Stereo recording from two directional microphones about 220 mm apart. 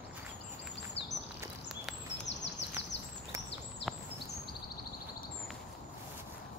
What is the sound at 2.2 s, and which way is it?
Bird, 50° left (ahead or behind).